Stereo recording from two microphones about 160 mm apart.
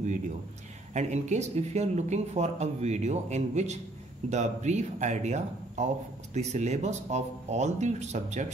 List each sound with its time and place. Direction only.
0.9 s speech: 45° right (ahead or behind)